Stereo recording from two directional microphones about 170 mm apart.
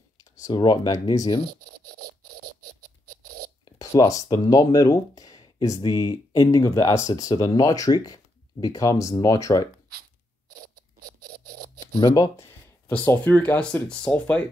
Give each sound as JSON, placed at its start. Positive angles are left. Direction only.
{"t": 0.2, "sound": "speech", "side_deg": 25}
{"t": 1.9, "sound": "a sound", "side_deg": -65}
{"t": 3.7, "sound": "speech", "side_deg": 20}
{"t": 12.1, "sound": "speech", "side_deg": 15}